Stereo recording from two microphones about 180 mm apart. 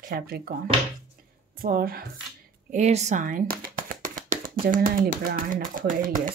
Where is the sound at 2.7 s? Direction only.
40° right (ahead or behind).